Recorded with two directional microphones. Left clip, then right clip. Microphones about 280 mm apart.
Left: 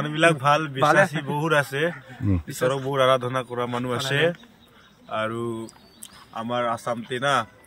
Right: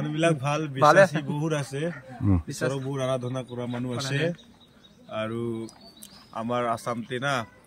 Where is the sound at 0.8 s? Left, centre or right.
Centre.